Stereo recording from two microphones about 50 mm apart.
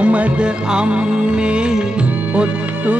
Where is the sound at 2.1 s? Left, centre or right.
Right.